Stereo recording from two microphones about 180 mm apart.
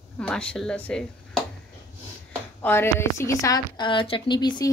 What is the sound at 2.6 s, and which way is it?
A woman's voice, 10° left (ahead or behind).